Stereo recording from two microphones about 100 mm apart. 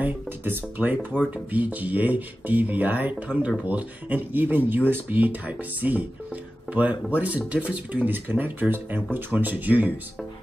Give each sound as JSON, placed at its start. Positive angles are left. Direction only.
{"t": 0.0, "sound": "speech", "side_deg": -15}